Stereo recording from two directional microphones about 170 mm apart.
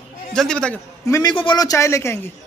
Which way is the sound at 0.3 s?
5° left (ahead or behind).